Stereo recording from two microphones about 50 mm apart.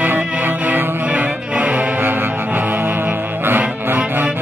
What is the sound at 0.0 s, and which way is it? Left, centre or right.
Music, right.